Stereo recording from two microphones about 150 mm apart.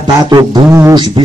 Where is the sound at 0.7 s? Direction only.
15° right (ahead or behind).